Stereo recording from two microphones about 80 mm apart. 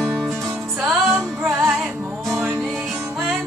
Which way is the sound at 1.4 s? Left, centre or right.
Right.